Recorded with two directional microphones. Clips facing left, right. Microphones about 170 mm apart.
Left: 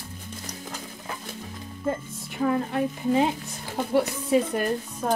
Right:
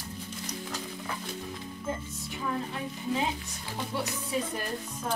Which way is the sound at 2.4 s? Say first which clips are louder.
Left 10 dB; 60° left (ahead or behind).